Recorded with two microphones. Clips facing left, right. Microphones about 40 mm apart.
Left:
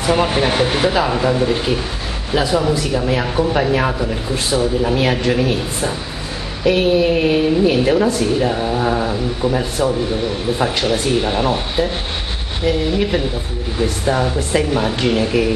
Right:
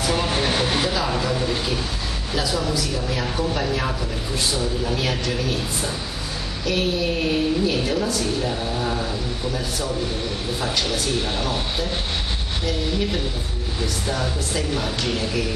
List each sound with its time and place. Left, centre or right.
0.0 s a woman's voice: left
13.7 s a woman's voice: left